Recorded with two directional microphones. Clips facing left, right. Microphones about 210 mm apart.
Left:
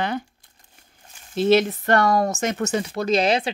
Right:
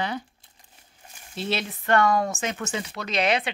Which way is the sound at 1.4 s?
45° left (ahead or behind).